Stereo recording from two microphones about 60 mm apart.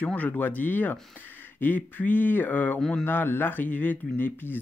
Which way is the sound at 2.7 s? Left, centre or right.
Centre.